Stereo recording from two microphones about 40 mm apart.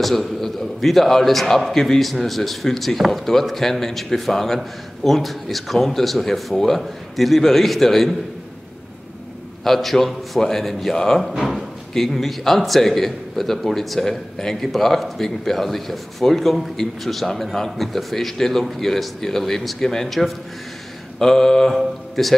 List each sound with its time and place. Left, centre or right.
0.0 s a man's voice: centre
9.7 s a man's voice: centre
11.2 s a man's voice: centre
21.2 s mantra: centre
21.7 s speech: centre